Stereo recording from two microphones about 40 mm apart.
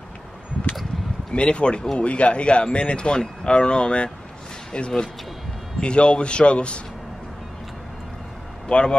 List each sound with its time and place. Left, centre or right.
1.3 s speech: left
8.6 s speech: left